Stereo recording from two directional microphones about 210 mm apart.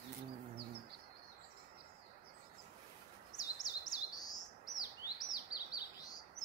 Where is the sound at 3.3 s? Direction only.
35° left (ahead or behind).